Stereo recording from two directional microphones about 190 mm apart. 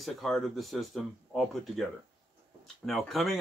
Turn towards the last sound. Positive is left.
turn(degrees=0)  # may be behind; listen again after turning